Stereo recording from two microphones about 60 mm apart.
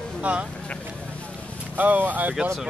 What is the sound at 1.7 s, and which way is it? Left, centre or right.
Speech, right.